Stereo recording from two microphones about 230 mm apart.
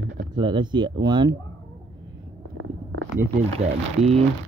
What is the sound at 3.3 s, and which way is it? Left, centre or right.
Speech, right.